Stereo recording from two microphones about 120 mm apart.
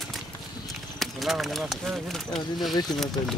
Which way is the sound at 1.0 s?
Centre (ahead or behind).